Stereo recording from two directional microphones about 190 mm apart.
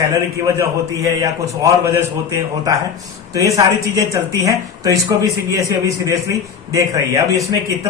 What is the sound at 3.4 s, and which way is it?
A man's voice, 15° right (ahead or behind).